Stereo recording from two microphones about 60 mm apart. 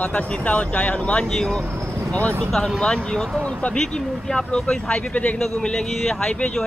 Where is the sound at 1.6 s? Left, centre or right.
Right.